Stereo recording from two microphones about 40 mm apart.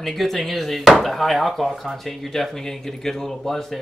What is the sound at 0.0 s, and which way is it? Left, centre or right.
Speech, centre.